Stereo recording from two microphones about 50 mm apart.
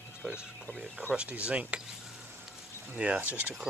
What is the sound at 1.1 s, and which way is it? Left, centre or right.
Speech, right.